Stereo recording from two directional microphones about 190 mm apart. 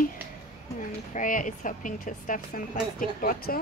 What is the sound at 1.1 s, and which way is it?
A woman's voice, 45° left (ahead or behind).